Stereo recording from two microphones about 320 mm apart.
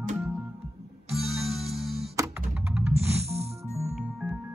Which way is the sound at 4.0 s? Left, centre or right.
Centre.